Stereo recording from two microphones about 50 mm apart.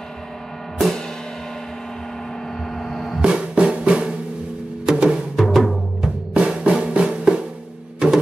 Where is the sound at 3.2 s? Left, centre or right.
Right.